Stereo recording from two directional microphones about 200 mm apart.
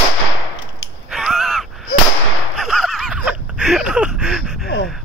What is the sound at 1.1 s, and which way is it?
Crow, centre (ahead or behind).